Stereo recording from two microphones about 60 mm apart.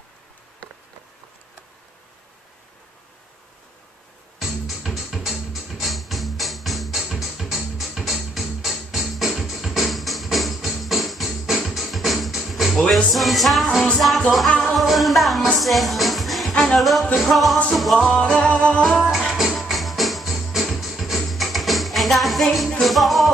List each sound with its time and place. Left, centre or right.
4.4 s music: centre
12.7 s music: centre
18.0 s music: centre
19.0 s music: centre